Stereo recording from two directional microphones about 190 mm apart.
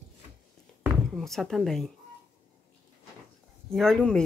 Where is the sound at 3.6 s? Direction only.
Centre (ahead or behind).